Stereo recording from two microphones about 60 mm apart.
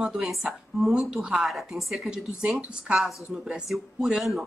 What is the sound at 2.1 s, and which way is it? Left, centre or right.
Speech, centre.